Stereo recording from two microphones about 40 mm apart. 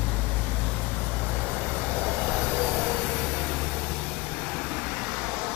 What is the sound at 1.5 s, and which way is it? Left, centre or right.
Vehicle, right.